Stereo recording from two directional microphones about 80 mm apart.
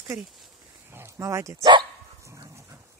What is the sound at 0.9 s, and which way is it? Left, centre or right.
Speech, right.